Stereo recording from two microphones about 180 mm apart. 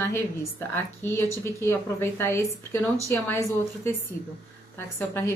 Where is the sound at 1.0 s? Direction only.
15° left (ahead or behind).